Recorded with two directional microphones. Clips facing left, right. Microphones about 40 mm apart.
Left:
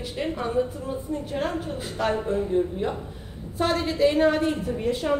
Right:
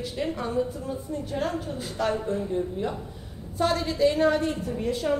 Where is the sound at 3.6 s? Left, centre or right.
Left.